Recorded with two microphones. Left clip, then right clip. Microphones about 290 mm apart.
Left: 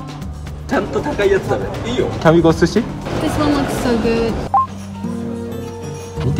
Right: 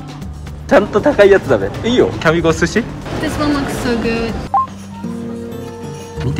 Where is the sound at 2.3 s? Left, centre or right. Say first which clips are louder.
Left 1 dB; centre.